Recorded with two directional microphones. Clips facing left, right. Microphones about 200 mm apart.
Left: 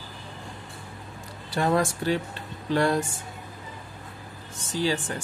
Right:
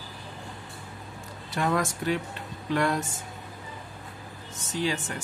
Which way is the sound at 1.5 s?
30° left (ahead or behind).